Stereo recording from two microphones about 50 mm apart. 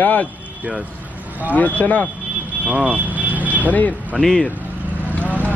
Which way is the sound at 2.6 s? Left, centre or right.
Right.